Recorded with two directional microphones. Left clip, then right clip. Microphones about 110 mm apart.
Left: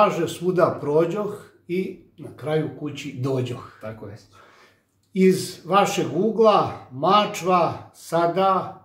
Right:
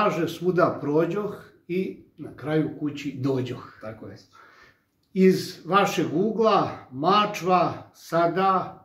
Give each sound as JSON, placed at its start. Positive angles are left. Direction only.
{"t": 0.0, "sound": "speech", "side_deg": 35}
{"t": 3.8, "sound": "speech", "side_deg": 15}
{"t": 5.1, "sound": "speech", "side_deg": 30}